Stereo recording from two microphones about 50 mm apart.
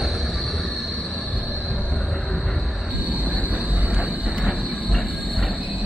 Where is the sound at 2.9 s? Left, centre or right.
Right.